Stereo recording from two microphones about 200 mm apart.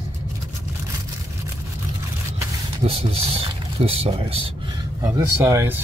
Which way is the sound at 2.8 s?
30° right (ahead or behind).